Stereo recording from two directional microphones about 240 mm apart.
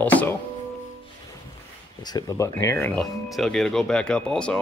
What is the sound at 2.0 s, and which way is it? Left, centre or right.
Speech, centre.